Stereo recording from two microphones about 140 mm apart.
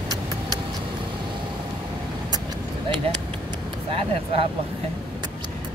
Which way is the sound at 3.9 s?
40° right (ahead or behind).